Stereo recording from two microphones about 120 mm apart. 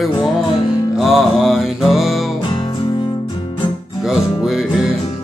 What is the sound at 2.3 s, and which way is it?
Music, 40° left (ahead or behind).